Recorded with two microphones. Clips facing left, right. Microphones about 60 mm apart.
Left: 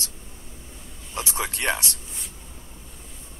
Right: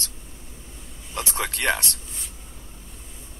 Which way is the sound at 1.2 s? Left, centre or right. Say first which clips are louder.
Right 2 dB; right.